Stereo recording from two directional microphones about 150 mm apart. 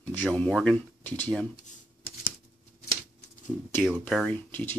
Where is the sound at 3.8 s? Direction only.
Centre (ahead or behind).